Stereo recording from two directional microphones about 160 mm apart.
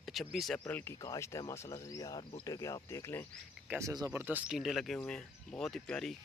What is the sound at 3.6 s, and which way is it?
Speech, 20° right (ahead or behind).